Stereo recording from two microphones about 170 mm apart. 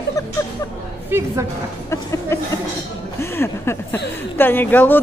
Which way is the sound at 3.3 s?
15° left (ahead or behind).